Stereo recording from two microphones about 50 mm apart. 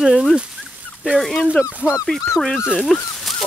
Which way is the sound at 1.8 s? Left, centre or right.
Centre.